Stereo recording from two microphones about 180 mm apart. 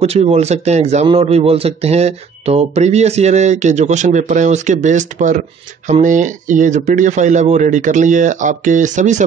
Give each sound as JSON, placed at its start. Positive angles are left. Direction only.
{"t": 0.0, "sound": "speech", "side_deg": -35}